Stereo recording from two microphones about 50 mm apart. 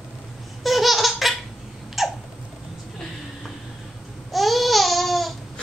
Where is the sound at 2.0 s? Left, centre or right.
Centre.